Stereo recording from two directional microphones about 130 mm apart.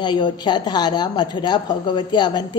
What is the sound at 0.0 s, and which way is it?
A woman's voice, 35° left (ahead or behind).